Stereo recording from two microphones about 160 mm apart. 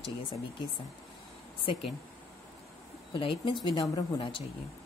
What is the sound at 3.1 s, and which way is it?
Speech, 30° left (ahead or behind).